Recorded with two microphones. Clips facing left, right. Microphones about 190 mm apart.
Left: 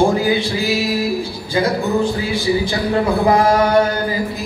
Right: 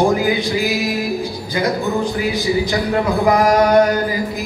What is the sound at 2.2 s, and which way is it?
Chant, 30° left (ahead or behind).